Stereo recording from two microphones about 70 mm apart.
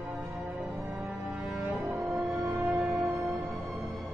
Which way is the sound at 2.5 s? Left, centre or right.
Centre.